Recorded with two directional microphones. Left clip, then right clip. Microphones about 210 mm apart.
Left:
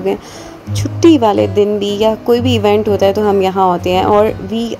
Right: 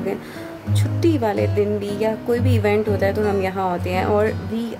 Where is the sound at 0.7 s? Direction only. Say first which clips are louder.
Left 11 dB; 25° left (ahead or behind).